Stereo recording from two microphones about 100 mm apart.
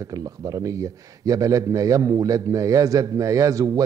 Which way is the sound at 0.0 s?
35° right (ahead or behind).